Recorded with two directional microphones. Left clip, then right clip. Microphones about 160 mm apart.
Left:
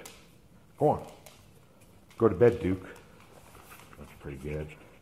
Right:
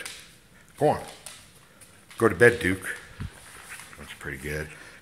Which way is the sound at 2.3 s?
10° right (ahead or behind).